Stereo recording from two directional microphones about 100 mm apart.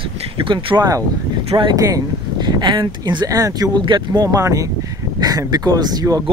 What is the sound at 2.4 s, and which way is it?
Speech, 45° right (ahead or behind).